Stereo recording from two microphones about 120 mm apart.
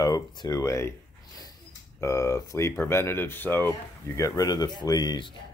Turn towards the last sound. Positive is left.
turn(degrees=40)  # may be behind; listen again after turning